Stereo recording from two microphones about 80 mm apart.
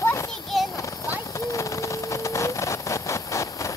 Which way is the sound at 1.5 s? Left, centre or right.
Left.